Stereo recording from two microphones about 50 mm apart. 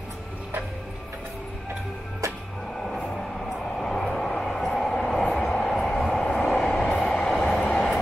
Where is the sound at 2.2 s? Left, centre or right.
Right.